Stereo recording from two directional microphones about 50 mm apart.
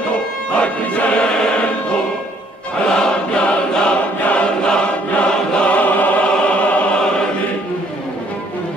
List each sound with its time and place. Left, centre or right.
0.6 s music: left
2.9 s choir: centre